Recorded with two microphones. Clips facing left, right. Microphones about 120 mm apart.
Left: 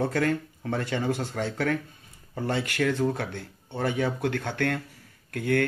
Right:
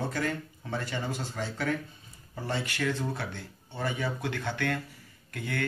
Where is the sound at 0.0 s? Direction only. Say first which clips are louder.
Left 6 dB; 60° left (ahead or behind).